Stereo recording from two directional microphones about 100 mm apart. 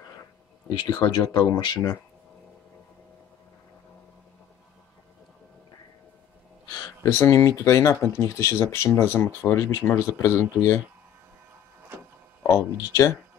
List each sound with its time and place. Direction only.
0.7 s speech: 45° left (ahead or behind)
6.7 s a sound: 40° left (ahead or behind)
7.1 s speech: 25° left (ahead or behind)
12.4 s speech: 30° left (ahead or behind)